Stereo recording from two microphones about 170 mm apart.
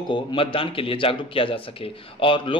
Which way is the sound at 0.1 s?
30° left (ahead or behind).